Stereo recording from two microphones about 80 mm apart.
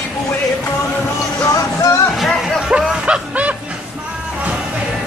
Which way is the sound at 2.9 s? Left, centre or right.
Centre.